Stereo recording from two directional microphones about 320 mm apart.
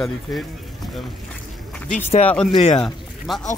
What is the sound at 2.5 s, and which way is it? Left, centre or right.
Speech, centre.